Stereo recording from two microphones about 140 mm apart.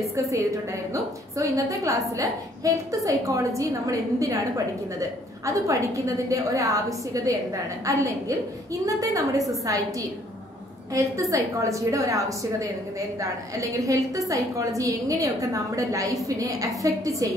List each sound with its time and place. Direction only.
0.9 s a woman's voice: 20° right (ahead or behind)
5.4 s a woman's voice: 20° right (ahead or behind)
11.0 s a woman's voice: 20° right (ahead or behind)